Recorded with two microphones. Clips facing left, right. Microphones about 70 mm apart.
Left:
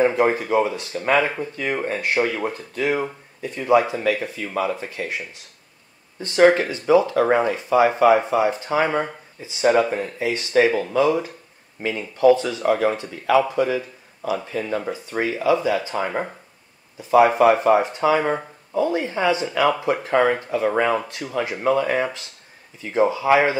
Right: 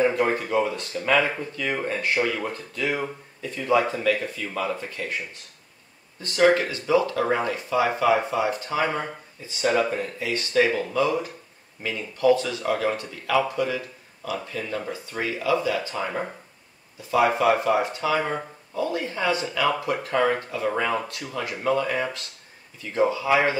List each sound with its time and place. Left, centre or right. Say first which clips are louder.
0.0 s speech: left 4 dB; left
2.2 s speech: left 3 dB; centre
4.0 s speech: left 2 dB; left
6.2 s speech: left 4 dB; left